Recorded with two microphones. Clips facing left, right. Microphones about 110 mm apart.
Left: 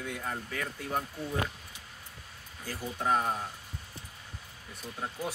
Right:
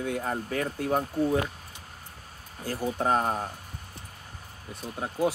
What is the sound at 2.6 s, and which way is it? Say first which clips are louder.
Speech: right 7 dB; 50° right (ahead or behind).